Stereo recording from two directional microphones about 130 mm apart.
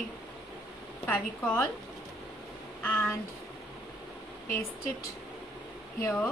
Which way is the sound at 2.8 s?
15° left (ahead or behind).